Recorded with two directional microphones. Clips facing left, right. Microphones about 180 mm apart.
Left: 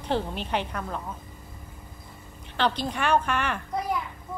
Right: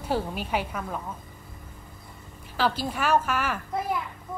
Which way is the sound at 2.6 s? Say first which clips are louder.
Even; 5° right (ahead or behind).